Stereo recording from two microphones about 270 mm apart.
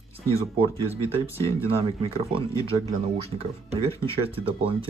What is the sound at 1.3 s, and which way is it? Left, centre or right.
Speech, right.